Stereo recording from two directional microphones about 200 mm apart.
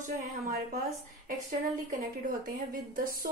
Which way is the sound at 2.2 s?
45° right (ahead or behind).